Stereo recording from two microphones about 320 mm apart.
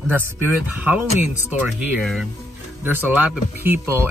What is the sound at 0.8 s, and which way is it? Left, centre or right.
Speech, centre.